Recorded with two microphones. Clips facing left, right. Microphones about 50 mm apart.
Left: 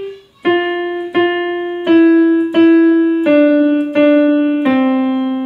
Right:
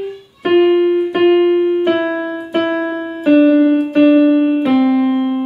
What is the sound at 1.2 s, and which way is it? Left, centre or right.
Keyboard, left.